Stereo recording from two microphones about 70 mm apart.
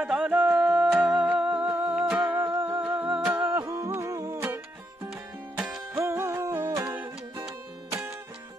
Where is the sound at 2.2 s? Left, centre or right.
Right.